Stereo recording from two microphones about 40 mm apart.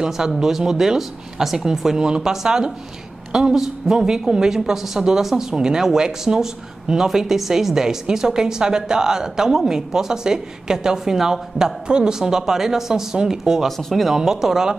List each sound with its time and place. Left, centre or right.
0.4 s speech: centre
13.7 s speech: centre
14.0 s speech: centre